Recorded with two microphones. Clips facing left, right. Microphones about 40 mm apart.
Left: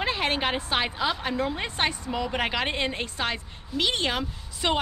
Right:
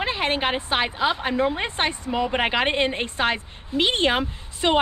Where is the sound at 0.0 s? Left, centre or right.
Centre.